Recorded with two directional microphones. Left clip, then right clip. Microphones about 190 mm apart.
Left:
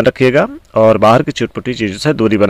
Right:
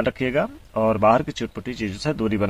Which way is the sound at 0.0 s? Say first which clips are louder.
Left 12 dB; 40° left (ahead or behind).